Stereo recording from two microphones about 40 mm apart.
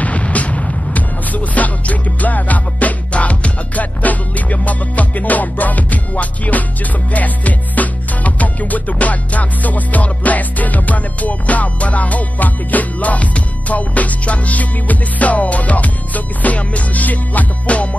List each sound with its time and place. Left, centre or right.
0.0 s music: left